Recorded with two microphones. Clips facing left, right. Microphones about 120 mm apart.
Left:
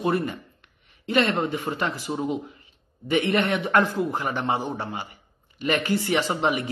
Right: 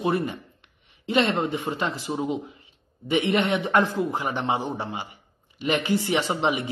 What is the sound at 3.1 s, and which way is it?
A man's voice, 20° right (ahead or behind).